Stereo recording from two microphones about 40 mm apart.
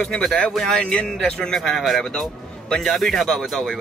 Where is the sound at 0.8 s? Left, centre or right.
Left.